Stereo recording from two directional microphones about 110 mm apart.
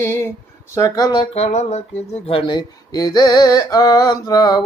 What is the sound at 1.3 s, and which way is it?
Speech, 85° left.